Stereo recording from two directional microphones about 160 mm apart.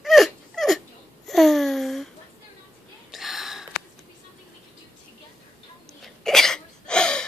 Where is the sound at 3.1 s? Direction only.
Centre (ahead or behind).